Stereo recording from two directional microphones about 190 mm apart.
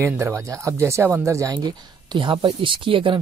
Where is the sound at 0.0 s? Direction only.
15° right (ahead or behind).